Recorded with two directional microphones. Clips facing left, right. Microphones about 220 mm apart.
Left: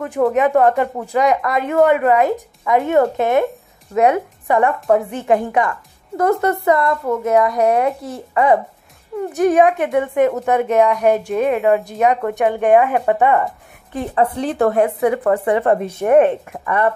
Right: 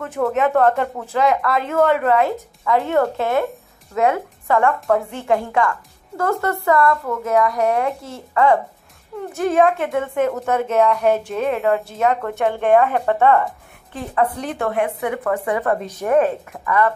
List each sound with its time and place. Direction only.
0.0 s a woman's voice: 15° left (ahead or behind)
14.1 s speech: 30° left (ahead or behind)